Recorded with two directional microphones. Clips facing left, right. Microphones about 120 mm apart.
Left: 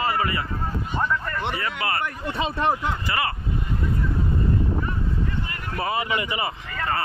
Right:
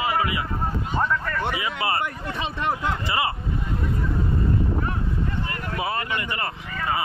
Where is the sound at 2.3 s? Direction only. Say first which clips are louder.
Left 7 dB; 35° left (ahead or behind).